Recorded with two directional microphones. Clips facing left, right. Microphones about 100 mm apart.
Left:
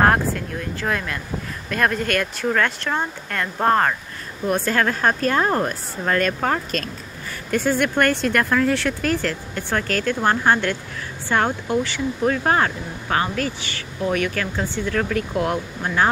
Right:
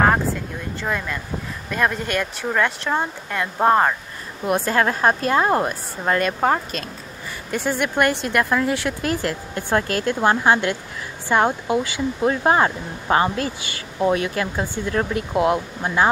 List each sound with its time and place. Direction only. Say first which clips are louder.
0.7 s a woman's voice: even; 5° right (ahead or behind)
7.6 s a woman's voice: even; 5° right (ahead or behind); by 15.2 s 25° right (ahead or behind)
15.3 s speech: right 3 dB; 10° right (ahead or behind)